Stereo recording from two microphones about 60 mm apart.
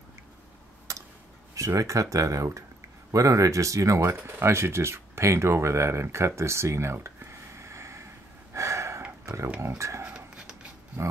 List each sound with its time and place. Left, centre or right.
0.9 s tick-tock: right
1.5 s speech: right
7.2 s a sound: right
9.2 s speech: right
10.0 s dog: centre
11.0 s speech: right